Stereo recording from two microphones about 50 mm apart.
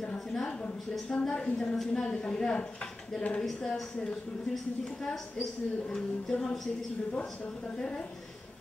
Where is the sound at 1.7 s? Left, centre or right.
Centre.